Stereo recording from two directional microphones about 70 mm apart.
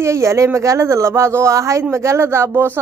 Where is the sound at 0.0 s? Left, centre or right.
Right.